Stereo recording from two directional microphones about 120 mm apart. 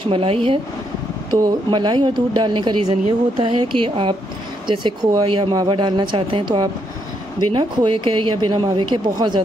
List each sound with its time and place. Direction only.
0.1 s a woman's voice: 50° right (ahead or behind)
1.4 s speech: 35° right (ahead or behind)
2.8 s a woman's voice: 55° right (ahead or behind)